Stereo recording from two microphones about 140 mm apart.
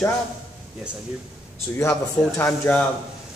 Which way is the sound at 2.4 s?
15° left (ahead or behind).